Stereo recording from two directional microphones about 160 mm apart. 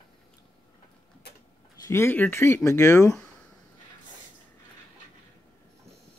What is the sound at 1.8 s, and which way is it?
Speech, 15° left (ahead or behind).